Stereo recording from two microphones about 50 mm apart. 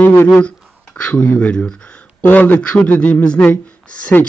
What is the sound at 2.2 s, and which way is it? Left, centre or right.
A man's voice, left.